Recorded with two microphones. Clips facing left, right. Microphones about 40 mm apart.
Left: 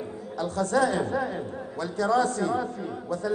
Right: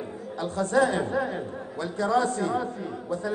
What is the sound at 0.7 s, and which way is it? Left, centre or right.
A man's voice, right.